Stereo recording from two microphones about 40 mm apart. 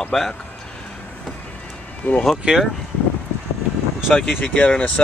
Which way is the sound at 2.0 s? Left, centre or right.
Left.